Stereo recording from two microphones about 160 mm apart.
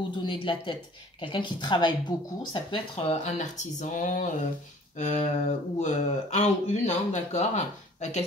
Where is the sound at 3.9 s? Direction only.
55° left (ahead or behind).